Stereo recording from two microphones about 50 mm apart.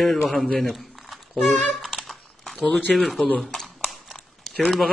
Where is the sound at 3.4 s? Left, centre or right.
Centre.